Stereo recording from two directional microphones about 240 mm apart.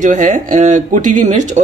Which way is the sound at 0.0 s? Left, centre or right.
Right.